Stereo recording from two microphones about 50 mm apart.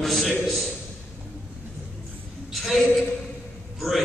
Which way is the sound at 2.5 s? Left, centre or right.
Centre.